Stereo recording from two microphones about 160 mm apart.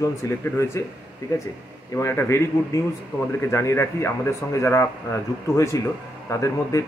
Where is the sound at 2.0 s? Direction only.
15° left (ahead or behind).